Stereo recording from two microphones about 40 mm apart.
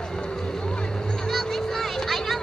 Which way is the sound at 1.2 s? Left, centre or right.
Centre.